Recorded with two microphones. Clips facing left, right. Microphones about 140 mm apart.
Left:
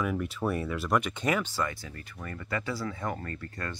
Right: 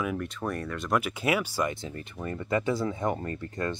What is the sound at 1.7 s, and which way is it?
Speech, 25° right (ahead or behind).